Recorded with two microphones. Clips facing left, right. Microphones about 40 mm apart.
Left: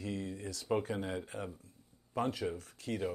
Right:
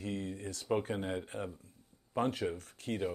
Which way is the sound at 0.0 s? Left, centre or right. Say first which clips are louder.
Right 1 dB; right.